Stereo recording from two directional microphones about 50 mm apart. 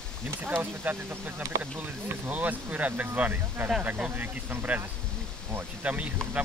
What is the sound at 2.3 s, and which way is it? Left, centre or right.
Speech, right.